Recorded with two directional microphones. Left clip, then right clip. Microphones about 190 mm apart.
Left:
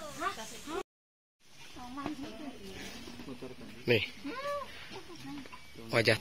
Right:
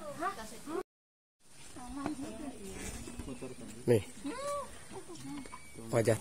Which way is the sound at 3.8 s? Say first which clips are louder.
Left 1 dB; 30° right (ahead or behind).